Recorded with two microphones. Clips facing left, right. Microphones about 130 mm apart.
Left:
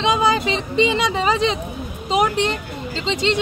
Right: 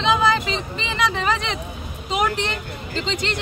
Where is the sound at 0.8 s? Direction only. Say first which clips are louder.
Left 3 dB; 20° left (ahead or behind).